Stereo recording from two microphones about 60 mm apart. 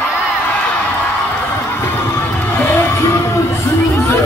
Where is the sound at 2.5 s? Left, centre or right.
Left.